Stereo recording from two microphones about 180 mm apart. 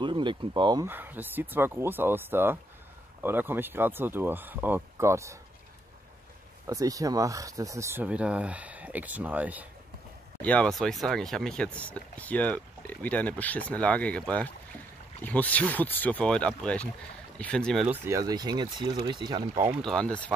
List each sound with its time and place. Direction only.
0.0 s speech: 25° right (ahead or behind)
0.8 s speech: 10° right (ahead or behind)
6.7 s speech: 20° right (ahead or behind)
10.4 s speech: 5° left (ahead or behind)
17.8 s speech: 15° right (ahead or behind)
19.8 s speech: 5° left (ahead or behind)